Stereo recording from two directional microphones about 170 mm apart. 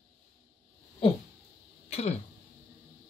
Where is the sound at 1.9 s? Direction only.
40° left (ahead or behind).